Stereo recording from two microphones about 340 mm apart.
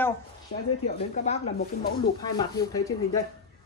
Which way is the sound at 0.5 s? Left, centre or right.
Left.